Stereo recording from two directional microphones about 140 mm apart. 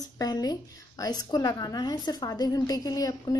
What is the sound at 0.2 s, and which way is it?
A woman's voice, 25° left (ahead or behind).